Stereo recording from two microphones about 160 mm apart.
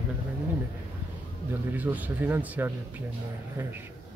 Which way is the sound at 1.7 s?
10° right (ahead or behind).